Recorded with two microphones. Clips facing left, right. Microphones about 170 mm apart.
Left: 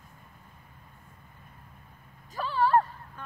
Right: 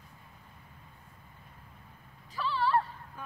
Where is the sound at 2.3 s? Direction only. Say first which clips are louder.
Left 5 dB; 45° left (ahead or behind).